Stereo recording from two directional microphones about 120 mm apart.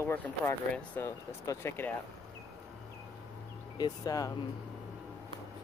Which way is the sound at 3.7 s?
35° left (ahead or behind).